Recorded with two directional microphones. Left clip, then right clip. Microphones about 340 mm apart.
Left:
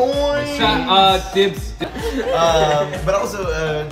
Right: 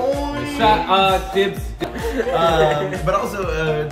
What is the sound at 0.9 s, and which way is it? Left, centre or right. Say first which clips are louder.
Music: left 2 dB; left.